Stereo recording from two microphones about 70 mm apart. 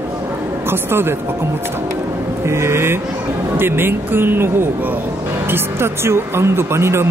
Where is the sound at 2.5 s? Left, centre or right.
Right.